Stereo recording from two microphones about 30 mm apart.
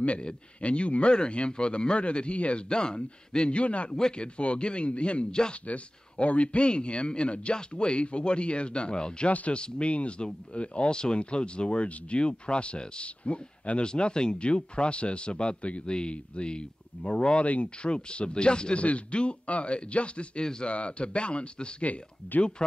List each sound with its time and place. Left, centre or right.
0.6 s speech: left
2.7 s speech: left
3.4 s speech: left
3.9 s speech: left
4.4 s speech: left
5.3 s speech: left
5.7 s speech: left
6.6 s speech: left
13.8 s speech: left
15.8 s speech: left
17.5 s speech: left
17.9 s speech: left
18.8 s speech: left
22.2 s speech: left